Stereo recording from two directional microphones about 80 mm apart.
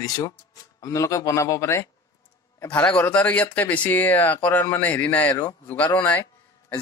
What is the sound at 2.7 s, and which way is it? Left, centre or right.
A man's voice, centre.